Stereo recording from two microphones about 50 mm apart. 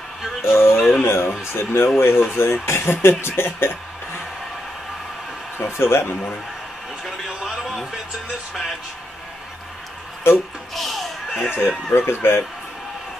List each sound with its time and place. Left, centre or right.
0.4 s speech: left
0.7 s a sound: centre
1.0 s speech: left
5.7 s speech: left
7.4 s music: centre
10.7 s a sound: centre
11.5 s speech: left